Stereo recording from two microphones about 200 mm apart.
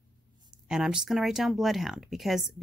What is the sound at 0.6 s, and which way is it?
Speech, 5° right (ahead or behind).